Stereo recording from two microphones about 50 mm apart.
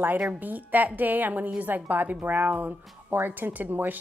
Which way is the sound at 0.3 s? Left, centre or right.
Right.